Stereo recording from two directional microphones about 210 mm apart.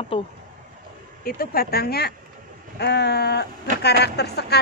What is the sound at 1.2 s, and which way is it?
Speech, 45° left (ahead or behind).